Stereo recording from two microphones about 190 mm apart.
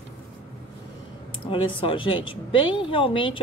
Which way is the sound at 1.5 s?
25° left (ahead or behind).